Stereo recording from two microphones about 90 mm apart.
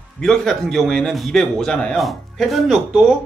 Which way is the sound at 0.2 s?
5° left (ahead or behind).